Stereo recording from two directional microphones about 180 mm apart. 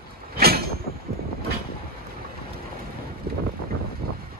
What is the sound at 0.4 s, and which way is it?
Vehicle, 60° right (ahead or behind).